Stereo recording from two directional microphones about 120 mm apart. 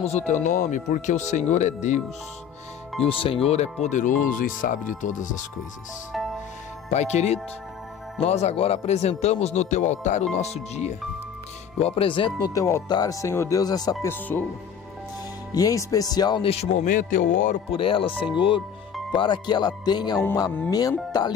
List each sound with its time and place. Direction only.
0.0 s speech: 75° left (ahead or behind)
3.0 s speech: 50° left (ahead or behind); by 5.4 s 90° left
6.9 s speech: 70° left (ahead or behind)
10.3 s speech: 65° left (ahead or behind)
11.8 s speech: 50° left (ahead or behind)
12.4 s speech: 30° left (ahead or behind)
14.0 s speech: 15° left (ahead or behind)
15.5 s speech: 30° left (ahead or behind)
16.4 s speech: 75° left (ahead or behind)
17.7 s speech: 50° left (ahead or behind)